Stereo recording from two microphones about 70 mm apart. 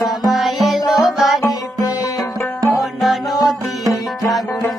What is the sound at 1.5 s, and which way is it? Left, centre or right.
Music, left.